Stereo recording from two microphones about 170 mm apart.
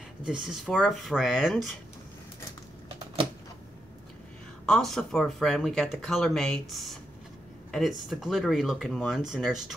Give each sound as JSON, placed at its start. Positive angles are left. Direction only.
{"t": 0.2, "sound": "speech", "side_deg": -5}
{"t": 4.6, "sound": "speech", "side_deg": 0}